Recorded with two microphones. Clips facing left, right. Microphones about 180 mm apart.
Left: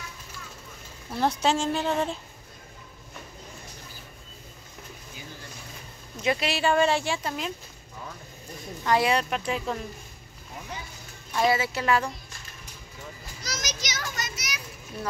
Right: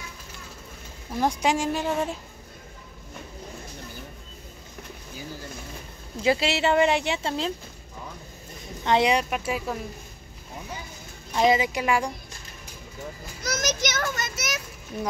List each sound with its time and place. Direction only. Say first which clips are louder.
1.1 s a woman's voice: right 1 dB; 15° right (ahead or behind)
6.1 s speech: right 4 dB; 30° right (ahead or behind)
8.8 s a woman's voice: right 2 dB; 20° right (ahead or behind)
11.3 s a woman's voice: right 3 dB; 20° right (ahead or behind)
13.4 s children playing: right 9 dB; 50° right (ahead or behind)